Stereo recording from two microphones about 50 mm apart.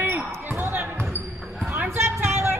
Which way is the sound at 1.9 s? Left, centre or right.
Right.